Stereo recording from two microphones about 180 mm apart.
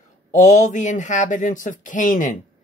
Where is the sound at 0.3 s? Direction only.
45° left (ahead or behind).